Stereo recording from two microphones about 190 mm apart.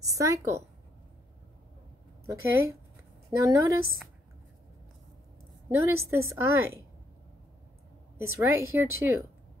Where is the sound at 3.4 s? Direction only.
15° right (ahead or behind).